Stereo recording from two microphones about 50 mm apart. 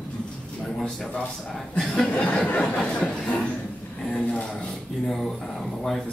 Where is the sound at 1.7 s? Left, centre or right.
Centre.